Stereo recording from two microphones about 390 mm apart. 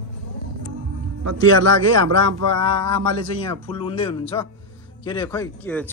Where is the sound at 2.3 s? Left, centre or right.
Right.